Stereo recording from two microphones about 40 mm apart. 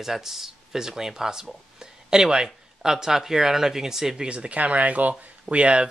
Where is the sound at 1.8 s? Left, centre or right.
Centre.